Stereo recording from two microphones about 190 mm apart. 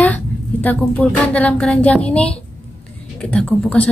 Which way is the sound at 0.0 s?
10° left (ahead or behind).